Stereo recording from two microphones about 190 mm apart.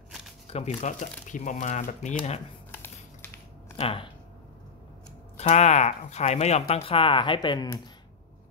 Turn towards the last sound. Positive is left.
turn(degrees=20)  # may be behind; listen again after turning